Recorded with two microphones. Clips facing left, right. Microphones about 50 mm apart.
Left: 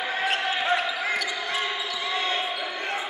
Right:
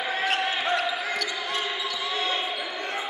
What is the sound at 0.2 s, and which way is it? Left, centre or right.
Basketball bounce, centre.